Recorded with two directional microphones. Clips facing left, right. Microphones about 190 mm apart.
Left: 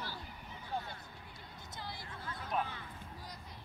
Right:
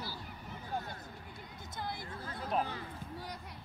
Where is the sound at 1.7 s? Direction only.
55° right (ahead or behind).